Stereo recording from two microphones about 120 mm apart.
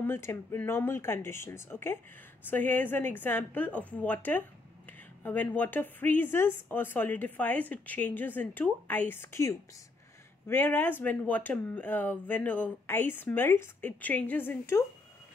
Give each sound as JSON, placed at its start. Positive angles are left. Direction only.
{"t": 0.0, "sound": "a woman's voice", "side_deg": 20}